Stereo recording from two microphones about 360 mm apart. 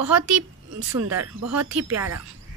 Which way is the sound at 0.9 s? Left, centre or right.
Right.